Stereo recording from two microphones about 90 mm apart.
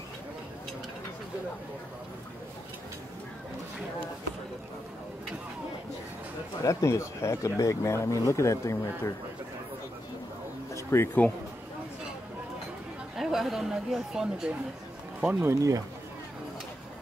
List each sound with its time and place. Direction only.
6.6 s speech: 35° left (ahead or behind)
10.7 s a sound: 30° left (ahead or behind)
13.1 s speech: 5° right (ahead or behind)
15.4 s speech: 35° right (ahead or behind)